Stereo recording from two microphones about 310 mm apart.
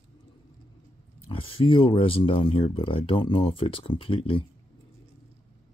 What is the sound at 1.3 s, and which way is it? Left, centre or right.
Speech, centre.